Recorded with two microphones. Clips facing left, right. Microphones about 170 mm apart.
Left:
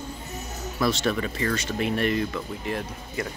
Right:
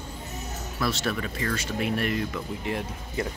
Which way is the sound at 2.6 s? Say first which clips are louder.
Even; 20° right (ahead or behind).